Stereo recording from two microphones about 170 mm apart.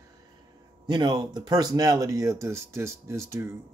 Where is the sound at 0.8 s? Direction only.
25° right (ahead or behind).